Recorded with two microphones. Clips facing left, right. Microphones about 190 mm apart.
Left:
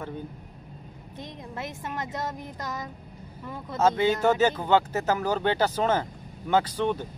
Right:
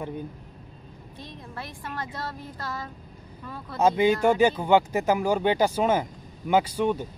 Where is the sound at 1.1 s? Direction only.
20° left (ahead or behind).